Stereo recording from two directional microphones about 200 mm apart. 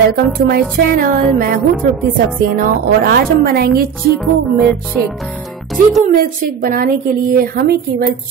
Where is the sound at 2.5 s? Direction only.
45° right (ahead or behind).